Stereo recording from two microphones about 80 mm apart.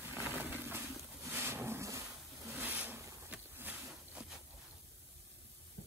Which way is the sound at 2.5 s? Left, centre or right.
Right.